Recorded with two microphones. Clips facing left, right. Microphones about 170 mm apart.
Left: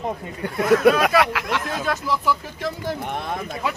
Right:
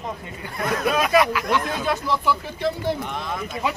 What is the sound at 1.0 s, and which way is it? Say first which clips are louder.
Speech: even; 85° left.